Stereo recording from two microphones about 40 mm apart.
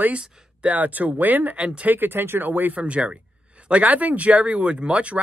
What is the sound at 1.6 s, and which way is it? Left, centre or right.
Speech, right.